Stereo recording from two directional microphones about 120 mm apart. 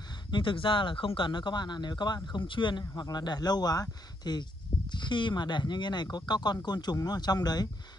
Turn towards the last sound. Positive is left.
turn(degrees=35)  # may be behind; listen again after turning